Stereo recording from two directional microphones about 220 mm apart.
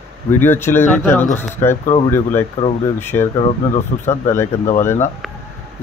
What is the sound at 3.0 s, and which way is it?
Speech, 10° left (ahead or behind).